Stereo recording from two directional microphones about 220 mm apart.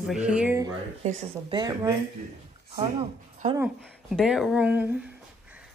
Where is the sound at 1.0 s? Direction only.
30° right (ahead or behind).